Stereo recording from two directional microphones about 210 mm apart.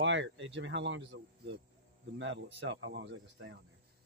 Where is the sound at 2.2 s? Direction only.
60° right (ahead or behind).